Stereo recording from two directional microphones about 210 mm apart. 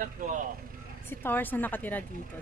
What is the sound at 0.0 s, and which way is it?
Speech, 40° right (ahead or behind).